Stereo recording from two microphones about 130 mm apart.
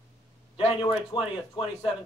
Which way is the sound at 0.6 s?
40° left (ahead or behind).